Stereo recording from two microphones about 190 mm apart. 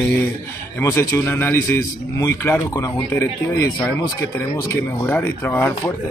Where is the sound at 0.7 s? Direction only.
15° left (ahead or behind).